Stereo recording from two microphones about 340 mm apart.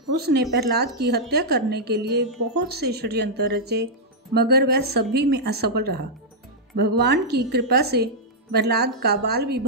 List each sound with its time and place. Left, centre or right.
0.1 s a woman's voice: right